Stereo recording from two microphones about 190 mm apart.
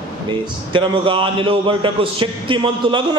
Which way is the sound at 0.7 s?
25° right (ahead or behind).